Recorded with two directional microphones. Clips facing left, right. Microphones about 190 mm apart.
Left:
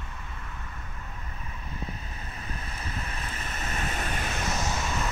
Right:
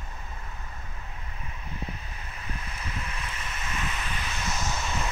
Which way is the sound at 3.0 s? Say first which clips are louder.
Left 1 dB; 40° left (ahead or behind).